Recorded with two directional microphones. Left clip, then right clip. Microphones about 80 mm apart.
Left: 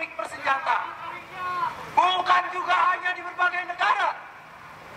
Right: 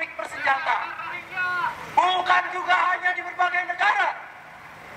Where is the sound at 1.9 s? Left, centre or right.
Centre.